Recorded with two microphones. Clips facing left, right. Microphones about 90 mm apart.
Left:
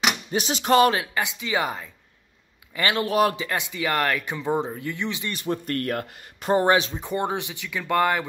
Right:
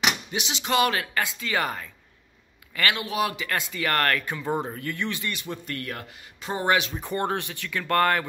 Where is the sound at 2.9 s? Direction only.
45° left (ahead or behind).